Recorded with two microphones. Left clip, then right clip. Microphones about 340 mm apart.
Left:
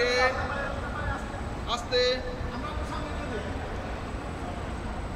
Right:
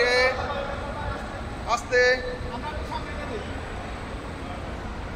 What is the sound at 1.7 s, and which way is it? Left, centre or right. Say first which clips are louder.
Speech: right 5 dB; centre.